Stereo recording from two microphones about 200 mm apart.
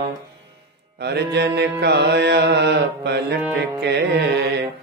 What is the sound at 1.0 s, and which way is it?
Music, 55° right (ahead or behind).